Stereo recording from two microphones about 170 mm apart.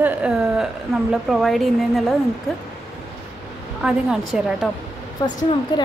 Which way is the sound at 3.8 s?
5° right (ahead or behind).